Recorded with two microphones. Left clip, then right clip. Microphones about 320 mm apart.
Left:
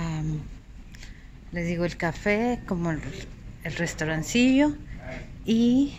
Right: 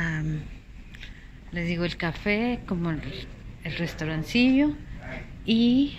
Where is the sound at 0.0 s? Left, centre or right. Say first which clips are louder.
Right 4 dB; centre.